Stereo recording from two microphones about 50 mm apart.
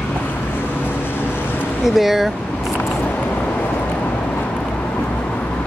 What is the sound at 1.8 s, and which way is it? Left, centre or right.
Speech, centre.